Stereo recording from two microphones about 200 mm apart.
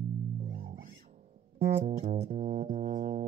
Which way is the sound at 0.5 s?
45° right (ahead or behind).